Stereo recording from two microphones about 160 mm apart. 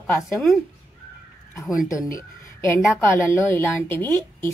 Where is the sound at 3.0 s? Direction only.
15° left (ahead or behind).